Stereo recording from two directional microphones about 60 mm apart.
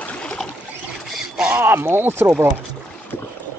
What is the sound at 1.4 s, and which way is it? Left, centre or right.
Speech, right.